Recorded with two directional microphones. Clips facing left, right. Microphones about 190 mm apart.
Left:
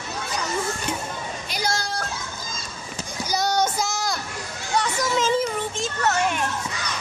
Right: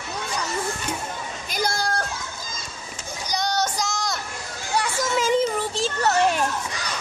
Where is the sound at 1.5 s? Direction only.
50° right (ahead or behind).